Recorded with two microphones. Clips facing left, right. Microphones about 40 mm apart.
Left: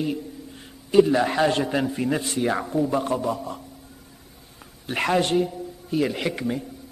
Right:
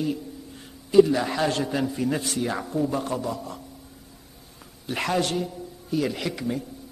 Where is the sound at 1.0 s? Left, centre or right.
Left.